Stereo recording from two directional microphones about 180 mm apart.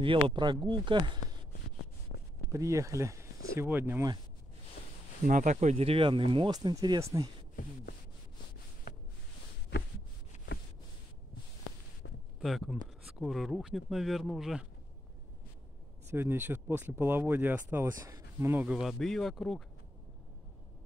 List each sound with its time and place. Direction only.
0.0 s speech: 25° right (ahead or behind)
2.5 s speech: 15° right (ahead or behind)
5.2 s speech: 45° right (ahead or behind); by 7.2 s 20° right (ahead or behind)
12.4 s speech: centre (ahead or behind)
16.1 s speech: 10° right (ahead or behind)